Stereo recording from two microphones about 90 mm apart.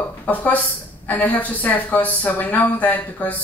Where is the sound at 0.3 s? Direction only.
15° left (ahead or behind).